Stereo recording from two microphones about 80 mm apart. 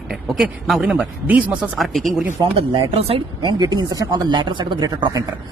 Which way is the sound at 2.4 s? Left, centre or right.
Right.